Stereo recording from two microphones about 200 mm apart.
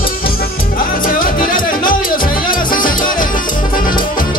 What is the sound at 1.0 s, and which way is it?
Music, 45° left (ahead or behind).